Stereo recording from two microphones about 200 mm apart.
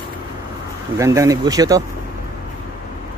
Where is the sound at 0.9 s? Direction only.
15° right (ahead or behind).